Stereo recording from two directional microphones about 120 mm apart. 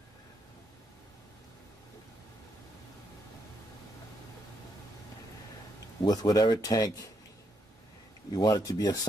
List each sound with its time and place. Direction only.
6.0 s speech: 30° left (ahead or behind)
8.3 s speech: 30° left (ahead or behind)